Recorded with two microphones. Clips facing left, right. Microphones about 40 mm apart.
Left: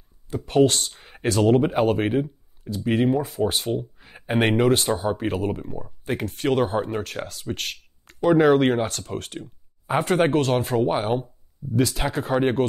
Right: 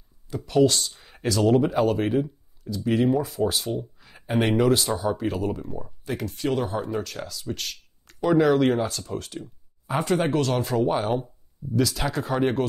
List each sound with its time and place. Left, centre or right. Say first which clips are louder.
0.5 s speech: left 1 dB; left
3.1 s speech: left 1 dB; centre
3.3 s speech: left 2 dB; left
10.3 s speech: left 2 dB; left